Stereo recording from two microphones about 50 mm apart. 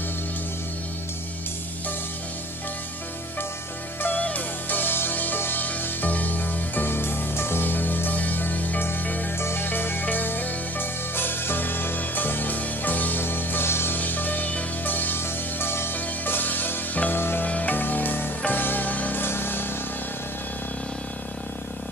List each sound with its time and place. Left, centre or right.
4.0 s music: left
9.4 s music: left
13.9 s music: left
17.1 s music: left
17.5 s music: left
17.7 s music: left
19.2 s music: left